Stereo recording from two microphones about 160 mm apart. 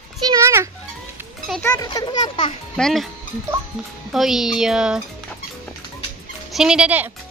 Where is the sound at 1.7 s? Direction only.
25° left (ahead or behind).